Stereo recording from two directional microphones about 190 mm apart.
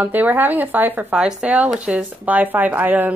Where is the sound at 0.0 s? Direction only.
10° right (ahead or behind).